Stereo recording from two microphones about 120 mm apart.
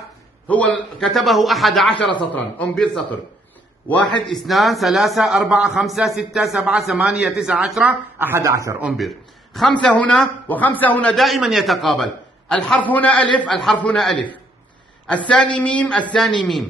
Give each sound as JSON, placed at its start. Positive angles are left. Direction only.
{"t": 0.5, "sound": "a man's voice", "side_deg": 10}
{"t": 8.2, "sound": "speech", "side_deg": -20}
{"t": 8.8, "sound": "a man's voice", "side_deg": 0}
{"t": 11.1, "sound": "a man's voice", "side_deg": 0}